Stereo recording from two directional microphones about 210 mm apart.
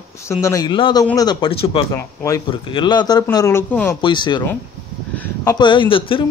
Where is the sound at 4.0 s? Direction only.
20° left (ahead or behind).